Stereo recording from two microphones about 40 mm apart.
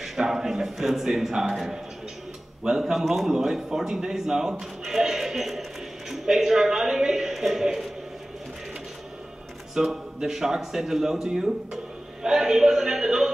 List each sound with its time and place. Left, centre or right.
0.0 s speech: centre
9.8 s speech: centre